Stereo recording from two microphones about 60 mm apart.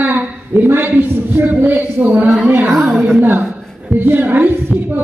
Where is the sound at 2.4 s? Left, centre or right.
Right.